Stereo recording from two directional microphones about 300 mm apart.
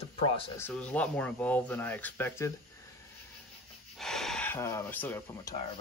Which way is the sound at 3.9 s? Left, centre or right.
Centre.